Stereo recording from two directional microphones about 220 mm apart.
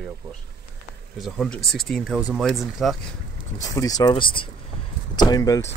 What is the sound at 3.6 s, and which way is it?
Speech, 15° left (ahead or behind).